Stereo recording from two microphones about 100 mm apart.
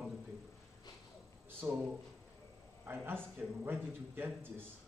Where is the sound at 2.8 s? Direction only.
20° right (ahead or behind).